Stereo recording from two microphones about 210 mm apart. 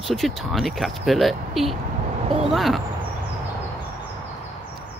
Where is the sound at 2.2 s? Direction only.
30° right (ahead or behind).